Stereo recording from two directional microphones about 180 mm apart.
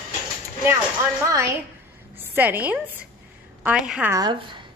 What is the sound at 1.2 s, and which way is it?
A woman's voice, 15° right (ahead or behind).